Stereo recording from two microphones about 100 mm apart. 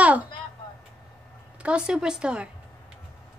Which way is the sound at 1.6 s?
10° right (ahead or behind).